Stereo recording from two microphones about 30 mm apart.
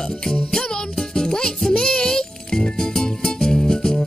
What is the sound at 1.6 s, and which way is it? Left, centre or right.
Speech, left.